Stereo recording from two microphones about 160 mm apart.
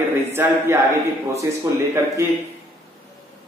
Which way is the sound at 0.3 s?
15° right (ahead or behind).